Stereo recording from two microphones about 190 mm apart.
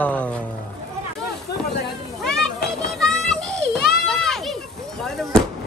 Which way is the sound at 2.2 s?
5° left (ahead or behind).